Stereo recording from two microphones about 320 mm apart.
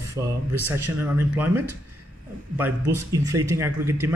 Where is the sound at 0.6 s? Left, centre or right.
Centre.